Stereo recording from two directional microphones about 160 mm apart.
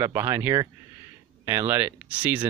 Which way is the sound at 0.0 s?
15° right (ahead or behind).